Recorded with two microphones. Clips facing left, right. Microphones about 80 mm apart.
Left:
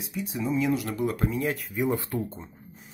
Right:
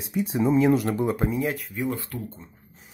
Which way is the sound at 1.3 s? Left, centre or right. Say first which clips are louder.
Right 2 dB; centre.